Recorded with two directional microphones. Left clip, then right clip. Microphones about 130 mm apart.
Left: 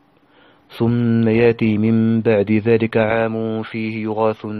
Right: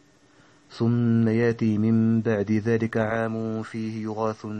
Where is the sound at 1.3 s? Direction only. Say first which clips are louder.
Left 12 dB; 20° left (ahead or behind).